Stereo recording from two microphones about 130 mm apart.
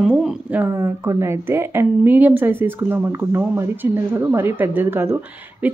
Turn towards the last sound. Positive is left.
turn(degrees=-15)  # may be behind; listen again after turning